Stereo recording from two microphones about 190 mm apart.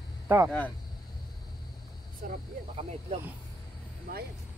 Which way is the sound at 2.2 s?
50° right (ahead or behind).